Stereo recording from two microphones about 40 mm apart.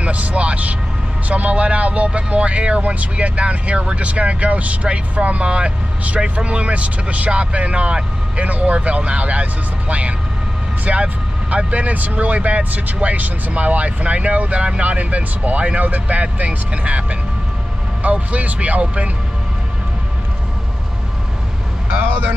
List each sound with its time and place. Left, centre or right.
0.0 s speech: right